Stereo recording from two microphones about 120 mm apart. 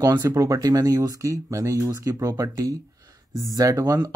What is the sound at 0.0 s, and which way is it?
Speech, 30° right (ahead or behind).